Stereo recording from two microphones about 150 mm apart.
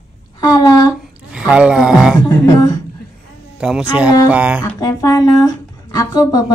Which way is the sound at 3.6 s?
5° right (ahead or behind).